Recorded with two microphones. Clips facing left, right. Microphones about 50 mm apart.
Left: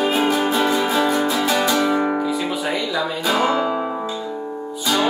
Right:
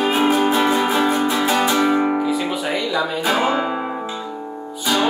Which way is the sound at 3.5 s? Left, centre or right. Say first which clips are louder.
Left 1 dB; right.